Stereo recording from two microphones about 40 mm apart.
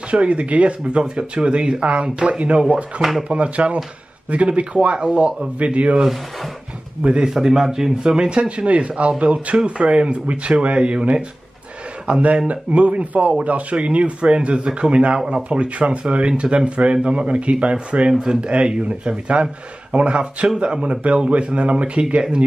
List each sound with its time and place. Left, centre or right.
0.1 s speech: right
3.0 s speech: centre
3.3 s speech: right
7.0 s speech: right
7.4 s speech: centre; by 22.0 s right